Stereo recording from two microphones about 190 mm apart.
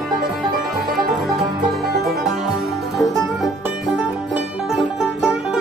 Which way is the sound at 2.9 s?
Centre (ahead or behind).